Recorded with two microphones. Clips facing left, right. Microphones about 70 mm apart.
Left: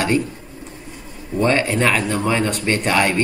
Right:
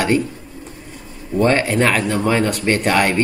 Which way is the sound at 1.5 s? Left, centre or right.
Centre.